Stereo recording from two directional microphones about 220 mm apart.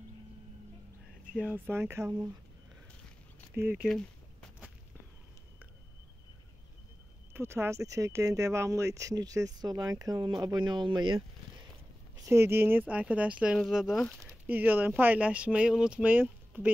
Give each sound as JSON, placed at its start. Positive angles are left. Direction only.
{"t": 1.2, "sound": "speech", "side_deg": -5}
{"t": 3.5, "sound": "a sound", "side_deg": -10}
{"t": 7.3, "sound": "speech", "side_deg": -10}